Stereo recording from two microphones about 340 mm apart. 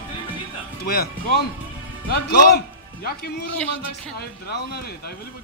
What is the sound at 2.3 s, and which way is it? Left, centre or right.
Speech, left.